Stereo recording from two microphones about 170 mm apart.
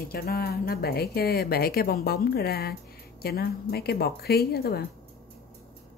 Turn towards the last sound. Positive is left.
turn(degrees=65)  # may be behind; listen again after turning